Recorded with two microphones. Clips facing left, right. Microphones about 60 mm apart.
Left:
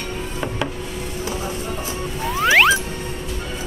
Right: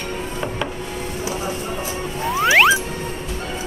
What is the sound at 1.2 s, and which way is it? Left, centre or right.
Music, centre.